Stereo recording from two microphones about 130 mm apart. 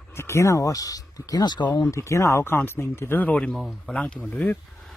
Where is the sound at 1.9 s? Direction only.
25° left (ahead or behind).